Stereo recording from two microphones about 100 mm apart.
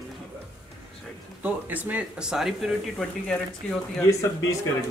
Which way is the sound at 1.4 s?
15° right (ahead or behind).